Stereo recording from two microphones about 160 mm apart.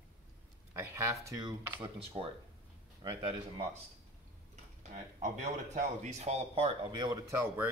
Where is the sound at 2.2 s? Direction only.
30° right (ahead or behind).